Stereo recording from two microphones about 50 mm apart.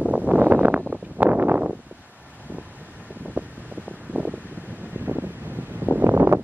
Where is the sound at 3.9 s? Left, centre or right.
Right.